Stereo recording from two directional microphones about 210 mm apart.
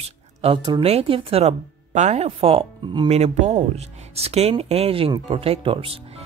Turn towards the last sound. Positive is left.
turn(degrees=-25)  # may be behind; listen again after turning